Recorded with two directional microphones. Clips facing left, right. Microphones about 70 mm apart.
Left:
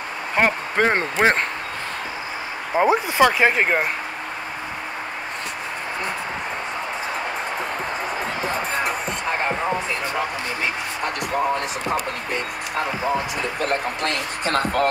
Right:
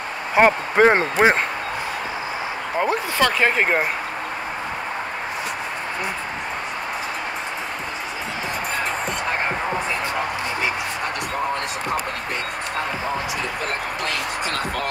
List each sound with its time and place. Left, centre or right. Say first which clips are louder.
0.4 s speech: right 5 dB; centre
1.1 s speech: right 2 dB; centre
2.8 s speech: left 4 dB; centre
3.5 s speech: even; centre
14.0 s speech: left 1 dB; left